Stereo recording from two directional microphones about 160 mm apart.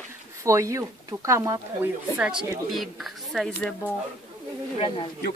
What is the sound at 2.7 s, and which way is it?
Speech, centre (ahead or behind).